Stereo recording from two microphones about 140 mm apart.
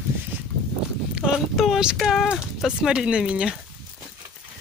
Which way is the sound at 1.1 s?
5° right (ahead or behind).